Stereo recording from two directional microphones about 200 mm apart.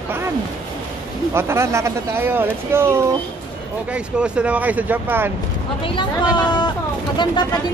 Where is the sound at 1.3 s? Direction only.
15° right (ahead or behind).